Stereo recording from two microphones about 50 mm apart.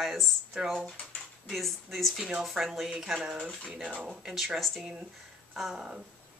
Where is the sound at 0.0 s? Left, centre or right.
Centre.